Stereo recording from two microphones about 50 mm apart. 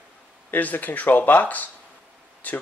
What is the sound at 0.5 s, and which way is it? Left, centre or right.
Speech, left.